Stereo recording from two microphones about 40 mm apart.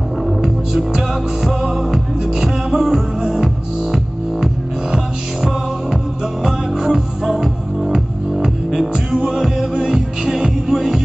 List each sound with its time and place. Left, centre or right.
0.4 s music: centre